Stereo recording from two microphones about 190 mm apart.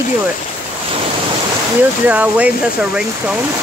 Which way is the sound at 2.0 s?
5° right (ahead or behind).